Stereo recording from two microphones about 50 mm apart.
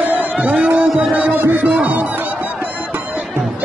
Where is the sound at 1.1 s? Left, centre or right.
Right.